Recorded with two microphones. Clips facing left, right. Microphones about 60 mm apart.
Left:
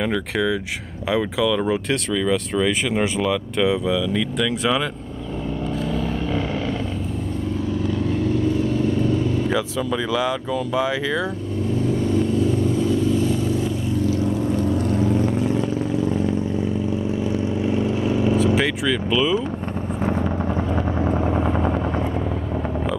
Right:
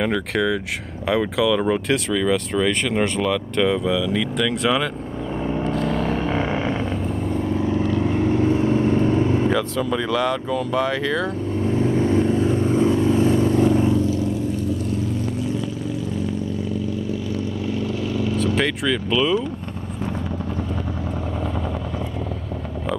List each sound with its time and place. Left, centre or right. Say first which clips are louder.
0.0 s speech: right 1 dB; centre
5.8 s vehicle: right 1 dB; centre
7.7 s vehicle: right 1 dB; right
9.5 s speech: right 1 dB; centre
12.0 s vehicle: right 1 dB; right
17.6 s vehicle: left 5 dB; left
18.4 s speech: left 2 dB; centre